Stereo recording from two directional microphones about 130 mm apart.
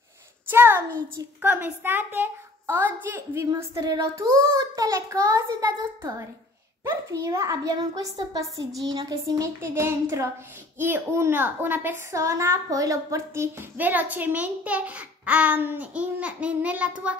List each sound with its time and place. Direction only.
0.5 s a woman's voice: 15° right (ahead or behind)